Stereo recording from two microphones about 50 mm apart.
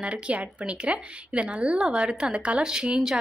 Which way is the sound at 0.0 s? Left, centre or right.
Right.